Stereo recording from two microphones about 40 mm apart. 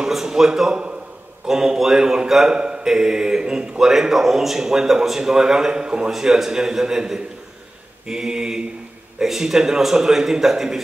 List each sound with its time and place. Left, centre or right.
0.1 s speech: centre
6.1 s speech: centre